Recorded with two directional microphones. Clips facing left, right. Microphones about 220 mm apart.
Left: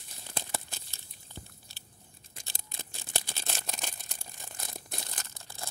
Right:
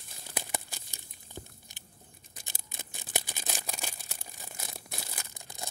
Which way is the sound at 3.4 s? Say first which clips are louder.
Right 1 dB; 5° right (ahead or behind).